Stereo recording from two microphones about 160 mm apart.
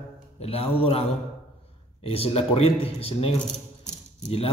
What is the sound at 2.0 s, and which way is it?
A man's voice, 35° left (ahead or behind).